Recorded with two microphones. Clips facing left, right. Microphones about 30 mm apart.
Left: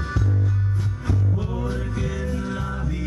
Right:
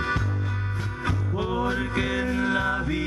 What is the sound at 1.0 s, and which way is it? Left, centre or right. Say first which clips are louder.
Music: right 1 dB; right.